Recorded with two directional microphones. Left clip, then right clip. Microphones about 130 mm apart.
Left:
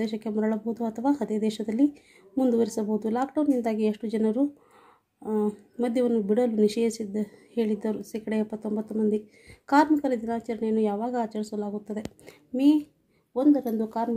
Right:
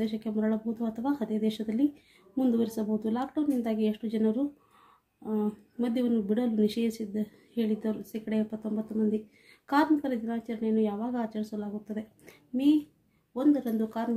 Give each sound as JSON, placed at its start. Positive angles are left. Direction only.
{"t": 0.0, "sound": "speech", "side_deg": 30}